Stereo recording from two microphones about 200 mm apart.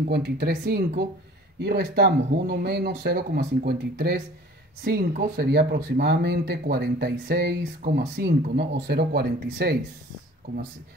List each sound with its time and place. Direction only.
0.1 s speech: 55° right (ahead or behind)